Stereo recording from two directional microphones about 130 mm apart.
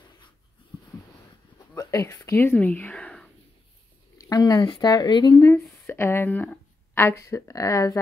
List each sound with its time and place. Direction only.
1.8 s speech: 25° left (ahead or behind)
2.3 s speech: 15° left (ahead or behind)
4.2 s speech: 30° left (ahead or behind)
5.4 s a woman's voice: 20° left (ahead or behind)